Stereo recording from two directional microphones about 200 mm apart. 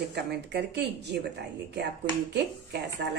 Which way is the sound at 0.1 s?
55° right (ahead or behind).